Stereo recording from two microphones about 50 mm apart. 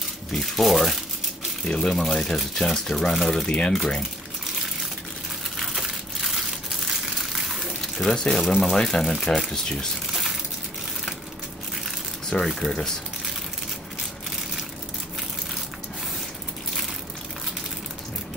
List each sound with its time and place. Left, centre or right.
0.3 s speech: centre
1.6 s speech: centre
2.3 s speech: centre
3.4 s speech: left
6.9 s crumpling: centre
8.1 s speech: centre
12.3 s speech: centre